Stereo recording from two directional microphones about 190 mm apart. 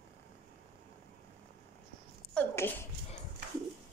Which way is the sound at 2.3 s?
10° left (ahead or behind).